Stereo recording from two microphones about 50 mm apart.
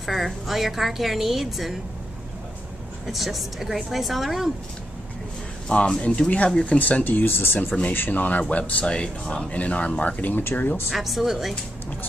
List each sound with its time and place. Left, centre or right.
0.0 s a woman's voice: centre
3.1 s a woman's voice: centre
5.7 s speech: centre
6.8 s speech: left
10.9 s a woman's voice: centre